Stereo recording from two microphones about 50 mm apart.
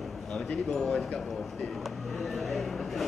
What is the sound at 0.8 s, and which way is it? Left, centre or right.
Speech, centre.